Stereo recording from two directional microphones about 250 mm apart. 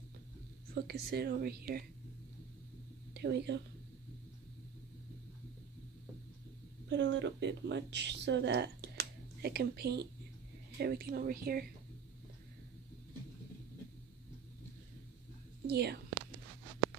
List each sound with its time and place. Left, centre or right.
0.8 s speech: right
3.2 s speech: right
6.9 s speech: right
15.6 s speech: right